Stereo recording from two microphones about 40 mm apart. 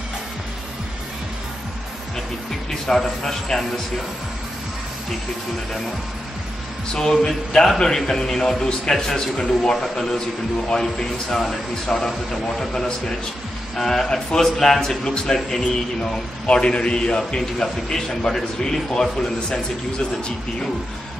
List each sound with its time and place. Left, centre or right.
2.9 s speech: centre
6.9 s a man's voice: centre